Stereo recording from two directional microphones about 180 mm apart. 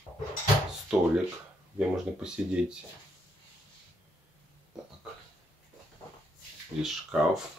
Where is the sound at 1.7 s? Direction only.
5° right (ahead or behind).